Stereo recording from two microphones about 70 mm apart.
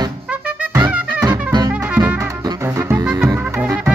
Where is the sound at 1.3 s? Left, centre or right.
Right.